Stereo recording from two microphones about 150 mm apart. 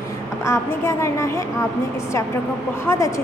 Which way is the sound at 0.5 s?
20° left (ahead or behind).